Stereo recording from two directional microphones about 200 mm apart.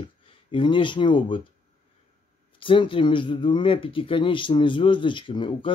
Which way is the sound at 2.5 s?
25° left (ahead or behind).